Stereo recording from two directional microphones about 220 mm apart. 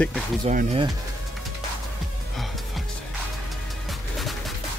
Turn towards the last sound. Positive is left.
turn(degrees=0)  # may be behind; listen again after turning